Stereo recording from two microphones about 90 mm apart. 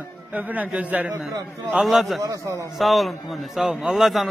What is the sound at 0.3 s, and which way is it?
A man's voice, 15° right (ahead or behind).